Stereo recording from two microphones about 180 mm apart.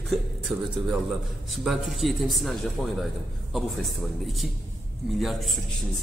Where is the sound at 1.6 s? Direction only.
Centre (ahead or behind).